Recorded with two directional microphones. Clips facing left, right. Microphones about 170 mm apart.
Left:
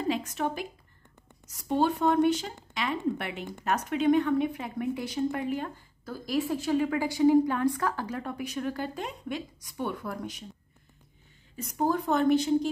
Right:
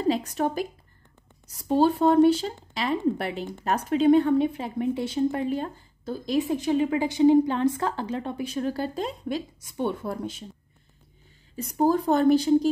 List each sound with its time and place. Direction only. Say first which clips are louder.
0.1 s speech: right 5 dB; 35° right (ahead or behind)
11.5 s speech: right 5 dB; 35° right (ahead or behind)